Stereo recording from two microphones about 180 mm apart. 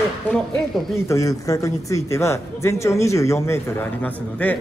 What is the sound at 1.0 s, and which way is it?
Speech, 15° left (ahead or behind).